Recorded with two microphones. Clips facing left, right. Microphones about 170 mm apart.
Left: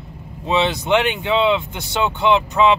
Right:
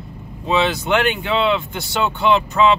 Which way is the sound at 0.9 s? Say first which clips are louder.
Left 1 dB; 20° left (ahead or behind).